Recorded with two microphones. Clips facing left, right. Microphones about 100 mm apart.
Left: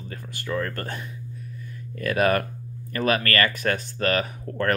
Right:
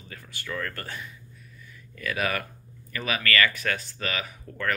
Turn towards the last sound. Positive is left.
turn(degrees=50)  # may be behind; listen again after turning